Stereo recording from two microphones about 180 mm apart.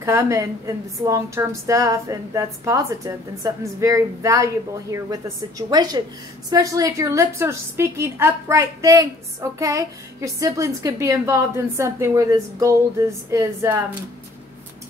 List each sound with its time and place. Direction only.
0.0 s a woman's voice: 15° right (ahead or behind)